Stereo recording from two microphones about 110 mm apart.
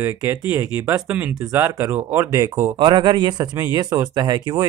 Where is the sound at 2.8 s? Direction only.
45° right (ahead or behind).